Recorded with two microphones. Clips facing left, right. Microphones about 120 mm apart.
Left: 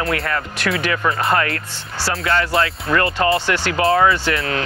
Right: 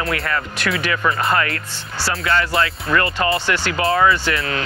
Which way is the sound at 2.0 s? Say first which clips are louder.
Even; 30° left (ahead or behind).